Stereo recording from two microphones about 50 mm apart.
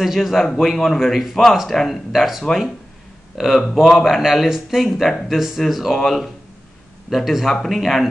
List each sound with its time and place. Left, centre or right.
0.0 s speech: centre